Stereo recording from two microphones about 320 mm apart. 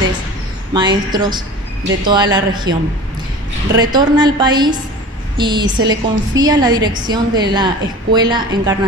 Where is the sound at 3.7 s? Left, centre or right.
Centre.